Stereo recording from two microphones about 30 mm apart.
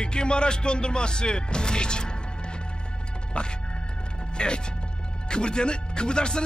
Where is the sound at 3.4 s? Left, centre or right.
Left.